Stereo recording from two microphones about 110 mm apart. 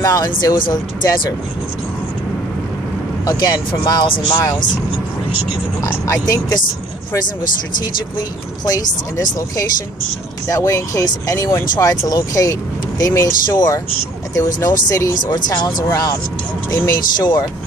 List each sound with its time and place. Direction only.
0.0 s speech: 35° left (ahead or behind)
3.3 s speech: 40° left (ahead or behind)
5.9 s speech: 30° left (ahead or behind)
8.6 s speech: 35° left (ahead or behind)
16.7 s speech: 35° left (ahead or behind)